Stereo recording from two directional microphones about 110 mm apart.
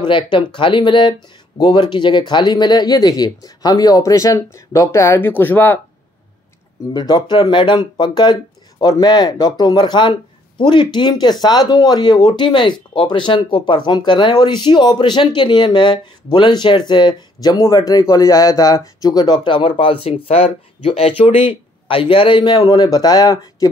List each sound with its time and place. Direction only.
0.1 s speech: 45° left (ahead or behind); by 5.8 s 15° left (ahead or behind)
6.9 s speech: 40° left (ahead or behind); by 21.1 s 65° left (ahead or behind)
21.5 s speech: 55° left (ahead or behind); by 23.7 s 35° left (ahead or behind)